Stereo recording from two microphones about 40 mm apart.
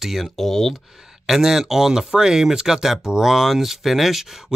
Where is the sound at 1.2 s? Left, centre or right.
Centre.